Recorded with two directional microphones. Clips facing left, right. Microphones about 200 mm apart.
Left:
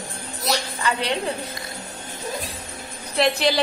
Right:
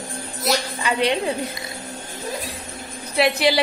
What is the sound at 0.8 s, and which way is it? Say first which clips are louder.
Speech: right 5 dB; 15° right (ahead or behind).